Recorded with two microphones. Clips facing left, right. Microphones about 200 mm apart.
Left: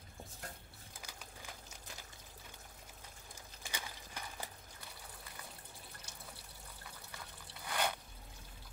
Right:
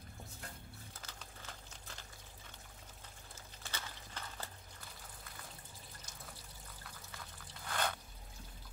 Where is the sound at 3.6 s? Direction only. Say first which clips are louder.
Left 1 dB; 10° left (ahead or behind).